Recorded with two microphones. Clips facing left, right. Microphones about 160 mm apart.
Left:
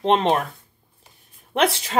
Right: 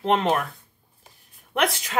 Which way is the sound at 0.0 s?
25° left (ahead or behind).